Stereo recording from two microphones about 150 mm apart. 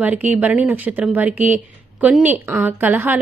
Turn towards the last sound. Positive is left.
turn(degrees=-10)  # may be behind; listen again after turning